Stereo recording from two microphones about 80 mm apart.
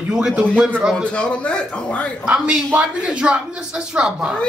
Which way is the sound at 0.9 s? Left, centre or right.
Centre.